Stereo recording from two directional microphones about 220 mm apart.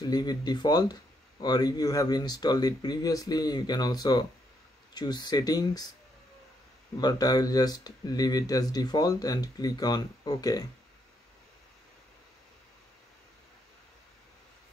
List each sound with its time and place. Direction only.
0.0 s speech: 20° left (ahead or behind)
7.0 s speech: 20° left (ahead or behind)